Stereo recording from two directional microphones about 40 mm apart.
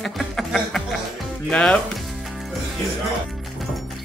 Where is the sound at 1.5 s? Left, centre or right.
Left.